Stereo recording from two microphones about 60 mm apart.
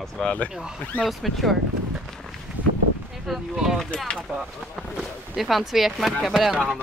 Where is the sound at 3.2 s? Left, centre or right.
Centre.